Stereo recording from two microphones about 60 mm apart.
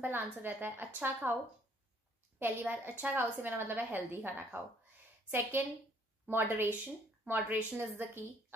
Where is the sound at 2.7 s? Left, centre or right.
Right.